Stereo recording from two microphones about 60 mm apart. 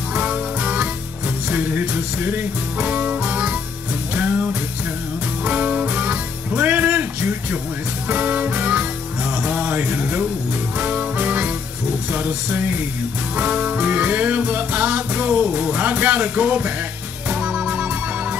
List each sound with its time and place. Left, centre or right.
0.1 s music: centre